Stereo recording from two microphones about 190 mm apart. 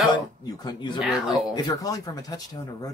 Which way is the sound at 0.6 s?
25° left (ahead or behind).